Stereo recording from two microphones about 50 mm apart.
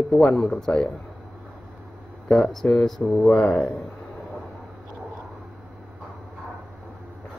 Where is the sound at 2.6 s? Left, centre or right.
Left.